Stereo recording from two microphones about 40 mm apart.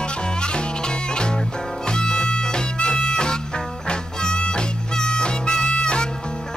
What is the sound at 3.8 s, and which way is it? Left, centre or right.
Harmonica, left.